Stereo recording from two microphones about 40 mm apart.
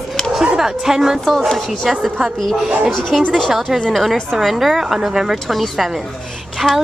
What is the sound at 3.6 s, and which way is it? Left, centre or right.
A woman's voice, centre.